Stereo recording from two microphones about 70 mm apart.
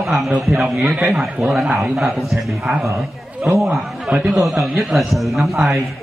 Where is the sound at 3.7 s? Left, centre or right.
Centre.